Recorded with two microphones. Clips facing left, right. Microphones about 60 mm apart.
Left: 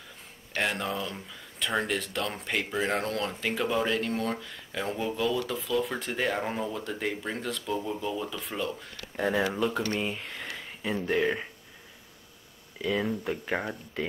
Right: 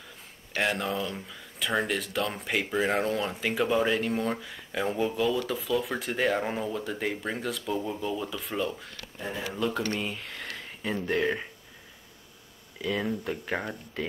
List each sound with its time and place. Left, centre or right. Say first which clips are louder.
0.6 s speech: right 2 dB; centre
9.1 s speech: left 8 dB; left
9.9 s speech: left 2 dB; centre
12.8 s speech: left 1 dB; centre